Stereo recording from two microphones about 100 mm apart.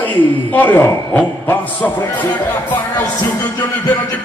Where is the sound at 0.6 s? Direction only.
25° left (ahead or behind).